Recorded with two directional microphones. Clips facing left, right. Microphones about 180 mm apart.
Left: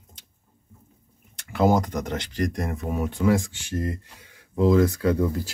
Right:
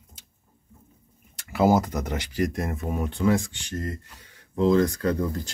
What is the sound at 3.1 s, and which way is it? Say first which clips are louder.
Speech: left 1 dB; 10° left (ahead or behind).